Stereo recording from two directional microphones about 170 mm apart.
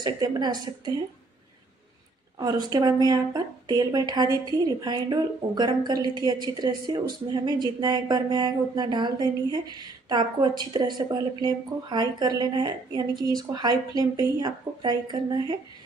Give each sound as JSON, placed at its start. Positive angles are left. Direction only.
{"t": 0.0, "sound": "speech", "side_deg": -25}
{"t": 2.3, "sound": "speech", "side_deg": -20}